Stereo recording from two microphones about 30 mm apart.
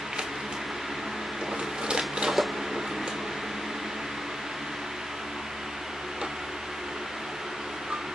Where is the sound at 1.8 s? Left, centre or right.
Right.